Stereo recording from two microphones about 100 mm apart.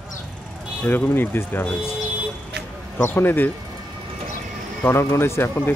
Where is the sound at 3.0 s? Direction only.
20° left (ahead or behind).